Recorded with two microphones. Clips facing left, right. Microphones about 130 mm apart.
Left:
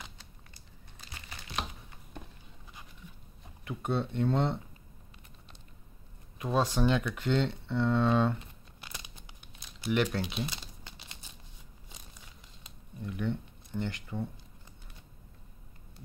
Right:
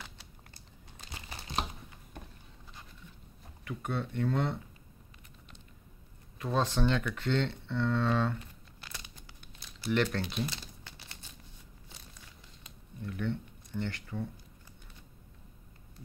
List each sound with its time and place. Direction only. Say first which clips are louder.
1.3 s crumpling: right 2 dB; 35° right (ahead or behind)
3.6 s speech: left 4 dB; 25° left (ahead or behind)
6.3 s speech: left 2 dB; 15° left (ahead or behind)
10.5 s crumpling: even; 20° left (ahead or behind)
13.0 s speech: left 1 dB; 10° left (ahead or behind)